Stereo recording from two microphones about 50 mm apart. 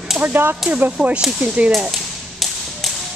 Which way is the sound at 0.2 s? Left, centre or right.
Right.